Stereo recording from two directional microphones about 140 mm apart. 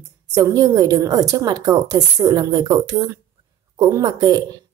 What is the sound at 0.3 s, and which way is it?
A woman's voice, 25° right (ahead or behind).